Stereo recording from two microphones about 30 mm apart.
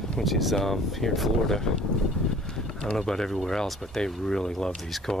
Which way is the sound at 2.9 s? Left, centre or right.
Centre.